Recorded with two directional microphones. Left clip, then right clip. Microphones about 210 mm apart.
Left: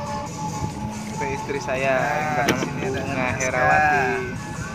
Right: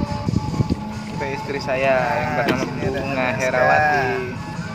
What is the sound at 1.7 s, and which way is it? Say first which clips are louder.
Speech: right 3 dB; 20° right (ahead or behind).